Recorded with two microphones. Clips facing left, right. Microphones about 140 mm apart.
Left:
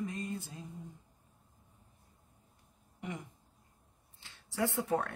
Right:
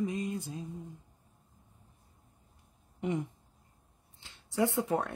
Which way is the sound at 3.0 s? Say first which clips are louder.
Right 10 dB; 25° right (ahead or behind).